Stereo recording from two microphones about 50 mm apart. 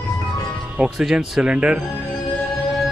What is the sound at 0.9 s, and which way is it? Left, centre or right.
Speech, centre.